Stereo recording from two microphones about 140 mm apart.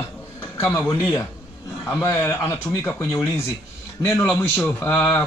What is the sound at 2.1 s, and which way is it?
Speech, 20° left (ahead or behind).